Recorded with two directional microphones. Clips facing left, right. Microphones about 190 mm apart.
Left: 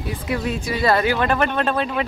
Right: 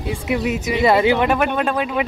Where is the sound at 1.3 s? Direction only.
10° right (ahead or behind).